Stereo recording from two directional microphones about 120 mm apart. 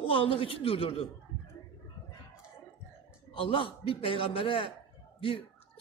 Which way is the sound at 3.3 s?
50° left (ahead or behind).